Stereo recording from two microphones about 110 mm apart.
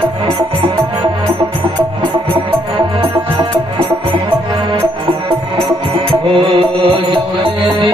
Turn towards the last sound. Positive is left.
turn(degrees=-55)  # may be behind; listen again after turning